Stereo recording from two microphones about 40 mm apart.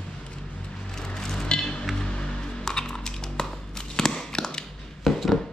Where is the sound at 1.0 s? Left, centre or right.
Centre.